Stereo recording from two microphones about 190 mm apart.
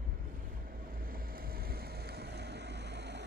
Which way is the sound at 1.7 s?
55° right (ahead or behind).